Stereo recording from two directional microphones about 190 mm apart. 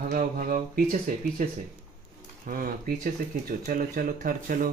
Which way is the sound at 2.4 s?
50° right (ahead or behind).